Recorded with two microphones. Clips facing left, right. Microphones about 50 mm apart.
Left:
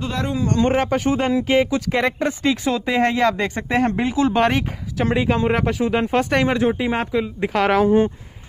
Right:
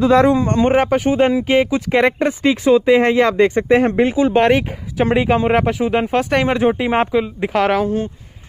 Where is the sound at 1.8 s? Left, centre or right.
Right.